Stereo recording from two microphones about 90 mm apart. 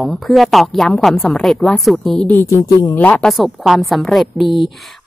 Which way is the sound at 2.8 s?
20° left (ahead or behind).